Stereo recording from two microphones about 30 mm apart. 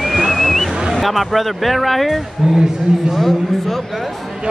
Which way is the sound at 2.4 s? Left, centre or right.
Centre.